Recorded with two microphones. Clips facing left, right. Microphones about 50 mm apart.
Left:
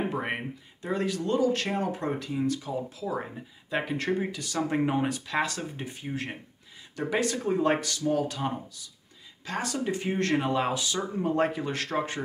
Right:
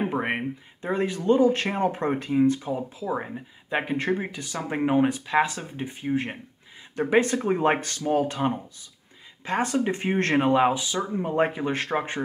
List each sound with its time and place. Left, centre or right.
0.1 s a sound: right
0.8 s speech: right
10.7 s speech: centre